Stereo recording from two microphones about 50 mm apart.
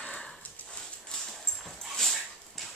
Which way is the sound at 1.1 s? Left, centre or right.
Centre.